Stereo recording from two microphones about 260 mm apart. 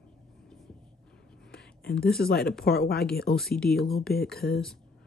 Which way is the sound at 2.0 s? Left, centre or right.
Left.